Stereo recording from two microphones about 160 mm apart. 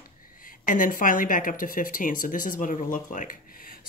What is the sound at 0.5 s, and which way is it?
Speech, 55° left (ahead or behind).